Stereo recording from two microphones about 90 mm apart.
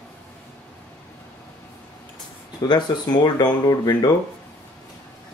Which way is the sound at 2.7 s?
50° left (ahead or behind).